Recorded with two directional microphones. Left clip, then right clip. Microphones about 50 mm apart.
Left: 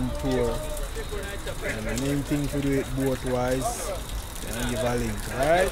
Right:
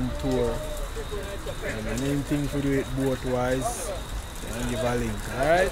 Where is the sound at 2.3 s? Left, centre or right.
Centre.